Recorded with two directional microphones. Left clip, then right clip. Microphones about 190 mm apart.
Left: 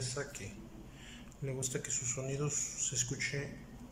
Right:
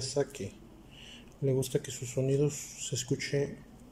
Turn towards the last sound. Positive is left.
turn(degrees=-30)  # may be behind; listen again after turning